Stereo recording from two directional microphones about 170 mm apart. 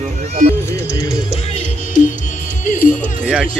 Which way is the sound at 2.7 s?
50° left (ahead or behind).